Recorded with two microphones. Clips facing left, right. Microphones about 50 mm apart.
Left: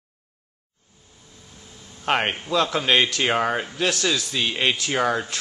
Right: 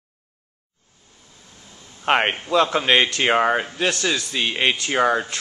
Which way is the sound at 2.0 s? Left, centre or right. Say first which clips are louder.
Right 3 dB; centre.